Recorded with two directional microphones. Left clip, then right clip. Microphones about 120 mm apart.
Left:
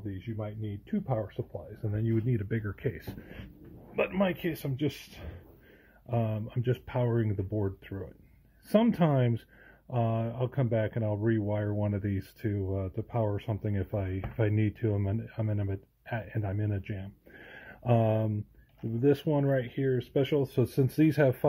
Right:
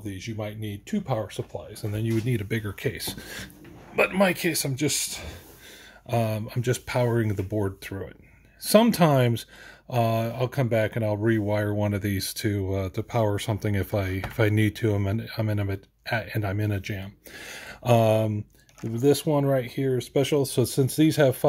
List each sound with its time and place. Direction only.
0.0 s speech: 25° right (ahead or behind)
2.2 s speech: 35° right (ahead or behind)
3.9 s speech: 50° right (ahead or behind)
18.9 s speech: 15° right (ahead or behind)
19.2 s speech: 25° right (ahead or behind)